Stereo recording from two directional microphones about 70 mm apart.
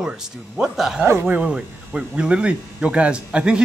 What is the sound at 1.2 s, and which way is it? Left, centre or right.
Speech, centre.